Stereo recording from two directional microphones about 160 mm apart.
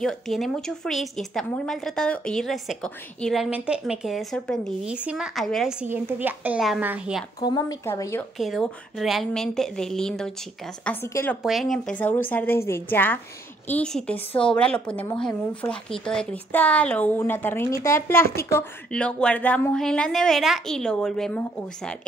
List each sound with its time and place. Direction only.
0.0 s a woman's voice: centre (ahead or behind)
7.3 s a woman's voice: 20° left (ahead or behind)
8.4 s a woman's voice: centre (ahead or behind)
11.4 s a woman's voice: centre (ahead or behind)